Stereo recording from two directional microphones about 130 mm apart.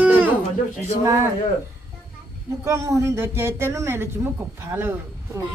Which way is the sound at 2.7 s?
25° right (ahead or behind).